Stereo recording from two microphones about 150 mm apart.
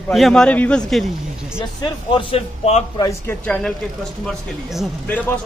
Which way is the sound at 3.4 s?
5° left (ahead or behind).